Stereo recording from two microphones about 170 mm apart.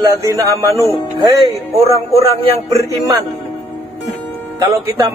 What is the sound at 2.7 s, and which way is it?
Speech, 20° right (ahead or behind).